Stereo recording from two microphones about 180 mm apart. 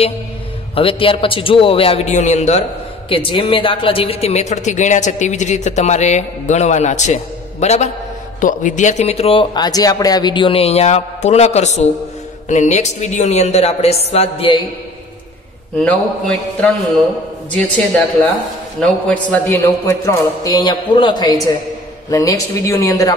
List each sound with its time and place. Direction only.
0.7 s speech: 30° left (ahead or behind)
15.8 s a man's voice: 5° left (ahead or behind); by 23.1 s 20° left (ahead or behind)